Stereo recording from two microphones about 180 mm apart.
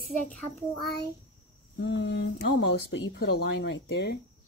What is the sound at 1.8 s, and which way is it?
Speech, 80° left.